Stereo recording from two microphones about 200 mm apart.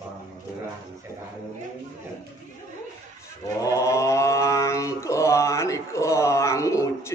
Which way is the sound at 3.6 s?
15° left (ahead or behind).